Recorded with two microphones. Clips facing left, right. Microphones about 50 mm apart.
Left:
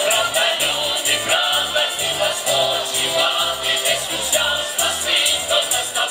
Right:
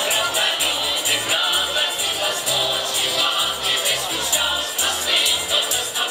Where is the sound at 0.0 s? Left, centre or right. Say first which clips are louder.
Left 3 dB; centre.